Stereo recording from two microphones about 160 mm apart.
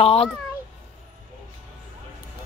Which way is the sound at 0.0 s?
35° left (ahead or behind).